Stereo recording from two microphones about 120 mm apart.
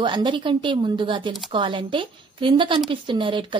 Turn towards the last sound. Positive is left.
turn(degrees=-45)  # may be behind; listen again after turning